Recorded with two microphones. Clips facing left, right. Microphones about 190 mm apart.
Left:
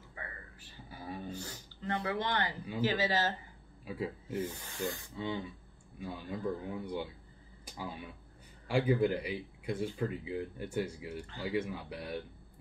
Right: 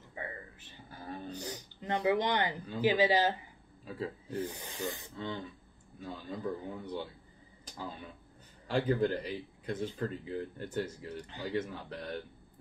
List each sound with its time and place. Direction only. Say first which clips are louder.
0.1 s a sound: right 6 dB; 25° right (ahead or behind)
0.8 s a sound: even; 10° left (ahead or behind)
1.3 s speech: right 2 dB; 15° right (ahead or behind)
3.8 s speech: left 1 dB; 10° left (ahead or behind)
4.5 s speech: left 1 dB; 15° right (ahead or behind)
5.1 s speech: left 2 dB; 10° left (ahead or behind)
7.6 s a sound: even; 10° left (ahead or behind)
8.6 s speech: left 1 dB; 10° left (ahead or behind)
11.1 s speech: even; 15° right (ahead or behind)
11.4 s speech: left 1 dB; 10° left (ahead or behind)